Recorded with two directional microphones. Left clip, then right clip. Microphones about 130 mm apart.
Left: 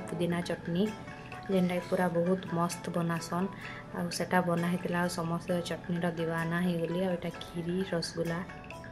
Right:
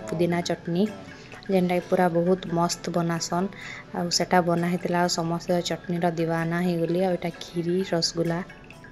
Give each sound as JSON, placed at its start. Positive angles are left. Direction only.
{"t": 0.0, "sound": "speech", "side_deg": -40}